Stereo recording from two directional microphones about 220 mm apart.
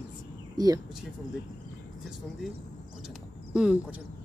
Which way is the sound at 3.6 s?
5° right (ahead or behind).